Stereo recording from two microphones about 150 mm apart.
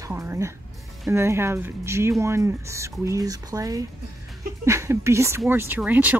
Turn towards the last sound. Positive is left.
turn(degrees=-10)  # may be behind; listen again after turning